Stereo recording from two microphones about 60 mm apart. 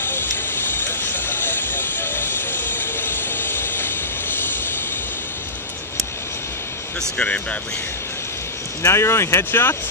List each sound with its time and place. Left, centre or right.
0.7 s vehicle: left
7.0 s speech: centre
8.8 s speech: left